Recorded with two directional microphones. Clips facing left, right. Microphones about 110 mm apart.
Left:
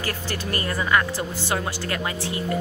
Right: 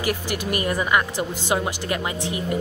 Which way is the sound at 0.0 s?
15° right (ahead or behind).